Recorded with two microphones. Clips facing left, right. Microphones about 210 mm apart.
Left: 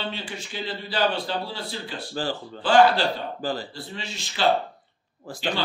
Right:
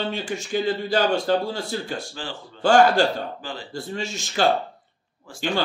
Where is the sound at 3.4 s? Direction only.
40° left (ahead or behind).